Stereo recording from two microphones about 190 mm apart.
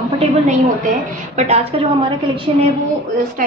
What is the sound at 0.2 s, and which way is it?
A woman's voice, 40° right (ahead or behind).